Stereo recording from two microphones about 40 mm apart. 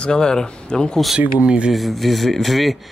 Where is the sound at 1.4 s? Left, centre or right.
Right.